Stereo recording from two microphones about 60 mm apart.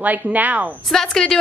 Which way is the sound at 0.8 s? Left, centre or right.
Centre.